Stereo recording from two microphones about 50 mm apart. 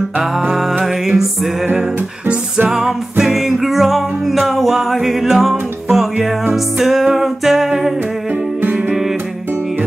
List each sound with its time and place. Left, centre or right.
0.5 s music: centre
1.8 s music: centre